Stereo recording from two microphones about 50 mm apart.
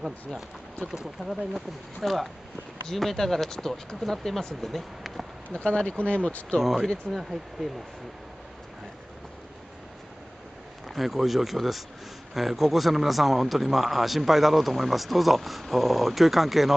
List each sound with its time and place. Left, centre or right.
0.9 s speech: centre
2.0 s a man's voice: centre
5.5 s speech: centre
6.6 s a man's voice: centre
7.6 s speech: centre
10.9 s a man's voice: centre